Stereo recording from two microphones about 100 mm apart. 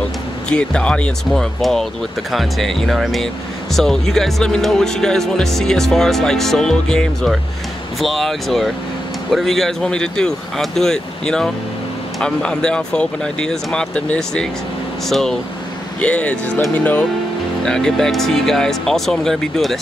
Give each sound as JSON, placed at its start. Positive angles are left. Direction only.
{"t": 0.5, "sound": "speech", "side_deg": 10}